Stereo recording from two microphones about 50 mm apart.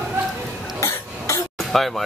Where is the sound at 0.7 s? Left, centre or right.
Left.